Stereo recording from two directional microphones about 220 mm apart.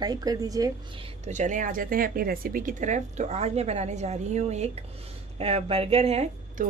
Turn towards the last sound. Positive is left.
turn(degrees=-30)  # may be behind; listen again after turning